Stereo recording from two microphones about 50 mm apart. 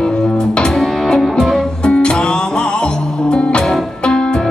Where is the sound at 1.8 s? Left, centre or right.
Centre.